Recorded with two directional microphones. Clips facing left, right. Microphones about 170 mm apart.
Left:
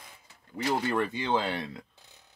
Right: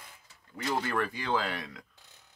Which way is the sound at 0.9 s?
25° left (ahead or behind).